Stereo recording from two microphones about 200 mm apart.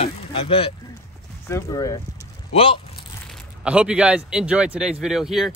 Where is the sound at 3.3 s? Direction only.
5° right (ahead or behind).